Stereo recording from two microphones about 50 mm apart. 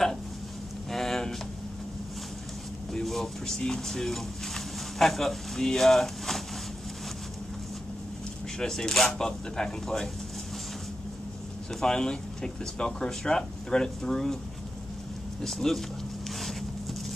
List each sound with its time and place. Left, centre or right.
0.9 s a sound: centre
2.9 s speech: centre
8.5 s speech: centre
11.8 s speech: centre
15.4 s speech: centre
16.3 s a sound: centre